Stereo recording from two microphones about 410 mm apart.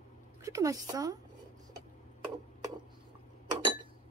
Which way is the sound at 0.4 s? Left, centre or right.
Centre.